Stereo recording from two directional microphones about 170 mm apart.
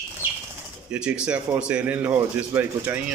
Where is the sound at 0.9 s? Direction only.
5° right (ahead or behind).